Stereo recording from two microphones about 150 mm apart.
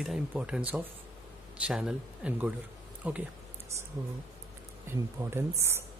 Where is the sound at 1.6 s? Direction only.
5° right (ahead or behind).